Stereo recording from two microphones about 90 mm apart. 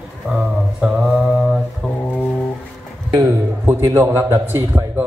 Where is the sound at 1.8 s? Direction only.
5° right (ahead or behind).